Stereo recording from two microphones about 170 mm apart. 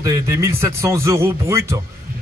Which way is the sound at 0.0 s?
15° right (ahead or behind).